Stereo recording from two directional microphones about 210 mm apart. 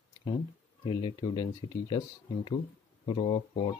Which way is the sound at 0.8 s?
25° left (ahead or behind).